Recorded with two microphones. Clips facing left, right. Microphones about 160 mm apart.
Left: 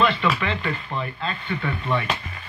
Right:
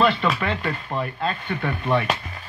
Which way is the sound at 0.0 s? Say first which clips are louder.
Right 1 dB; 45° right (ahead or behind).